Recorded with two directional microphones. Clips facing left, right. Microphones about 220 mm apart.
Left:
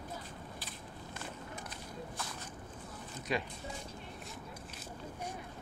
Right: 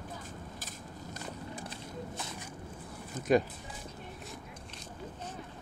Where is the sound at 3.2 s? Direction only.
50° right (ahead or behind).